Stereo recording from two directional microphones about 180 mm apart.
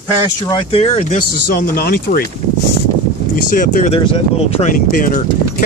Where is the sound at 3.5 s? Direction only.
45° left (ahead or behind).